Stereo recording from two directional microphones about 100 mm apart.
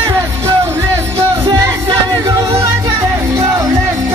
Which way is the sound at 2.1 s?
40° right (ahead or behind).